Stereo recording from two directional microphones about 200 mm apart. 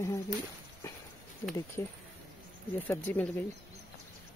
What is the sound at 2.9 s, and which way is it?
Speech, 10° left (ahead or behind).